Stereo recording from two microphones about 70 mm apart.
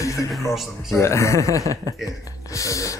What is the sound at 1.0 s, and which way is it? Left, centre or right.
Speech, left.